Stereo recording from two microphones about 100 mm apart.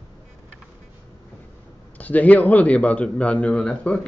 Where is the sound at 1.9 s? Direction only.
15° left (ahead or behind).